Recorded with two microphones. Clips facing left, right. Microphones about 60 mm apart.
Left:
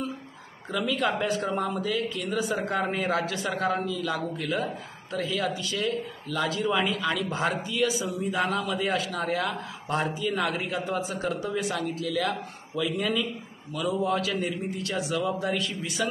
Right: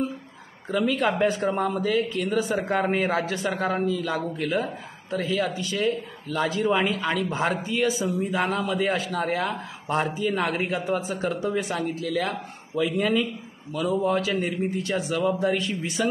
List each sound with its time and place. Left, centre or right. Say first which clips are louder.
0.7 s speech: right 3 dB; right